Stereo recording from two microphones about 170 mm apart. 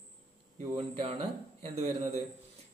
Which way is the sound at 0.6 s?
35° right (ahead or behind).